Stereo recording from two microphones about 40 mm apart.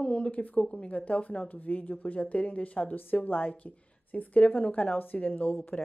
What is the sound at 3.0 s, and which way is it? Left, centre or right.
Speech, left.